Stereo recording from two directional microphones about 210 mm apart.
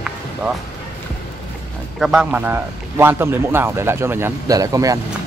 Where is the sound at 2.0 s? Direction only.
5° right (ahead or behind).